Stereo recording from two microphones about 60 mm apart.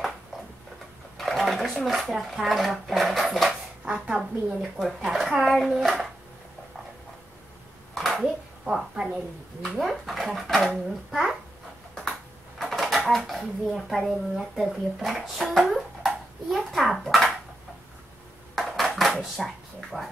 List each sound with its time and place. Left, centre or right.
1.1 s a woman's voice: centre
7.9 s a sound: centre
8.9 s a woman's voice: centre
9.6 s a woman's voice: centre
11.1 s babbling: centre
12.5 s speech: centre
18.5 s a sound: centre
19.3 s a woman's voice: centre